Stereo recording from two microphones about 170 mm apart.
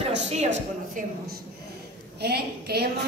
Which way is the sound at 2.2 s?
70° right (ahead or behind).